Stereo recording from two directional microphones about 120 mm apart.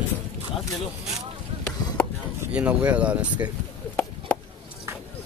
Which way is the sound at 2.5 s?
10° right (ahead or behind).